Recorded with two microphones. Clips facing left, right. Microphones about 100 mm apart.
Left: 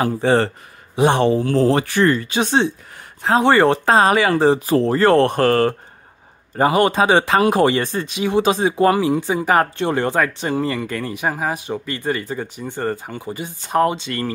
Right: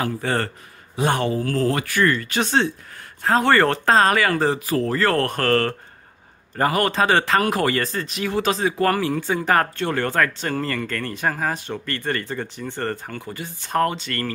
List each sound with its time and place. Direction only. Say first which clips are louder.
0.0 s speech: left 7 dB; 25° left (ahead or behind)